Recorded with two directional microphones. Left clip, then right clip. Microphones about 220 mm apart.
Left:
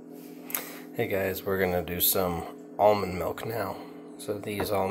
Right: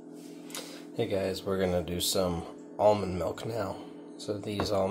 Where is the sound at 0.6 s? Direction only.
5° right (ahead or behind).